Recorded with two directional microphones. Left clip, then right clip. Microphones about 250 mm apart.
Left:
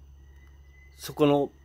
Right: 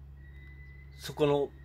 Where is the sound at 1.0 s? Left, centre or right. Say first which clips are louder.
Left 5 dB; left.